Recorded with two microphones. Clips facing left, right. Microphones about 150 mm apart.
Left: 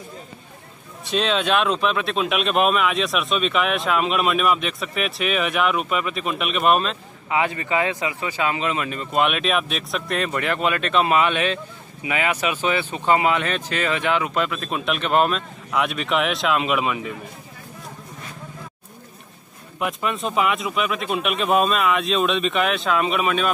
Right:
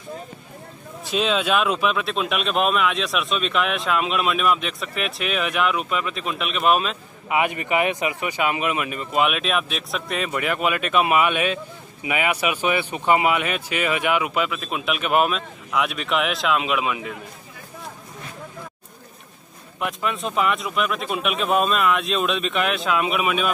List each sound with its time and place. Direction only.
1.0 s speech: centre (ahead or behind)
7.2 s speech: 15° right (ahead or behind); by 17.1 s centre (ahead or behind)
19.8 s speech: centre (ahead or behind)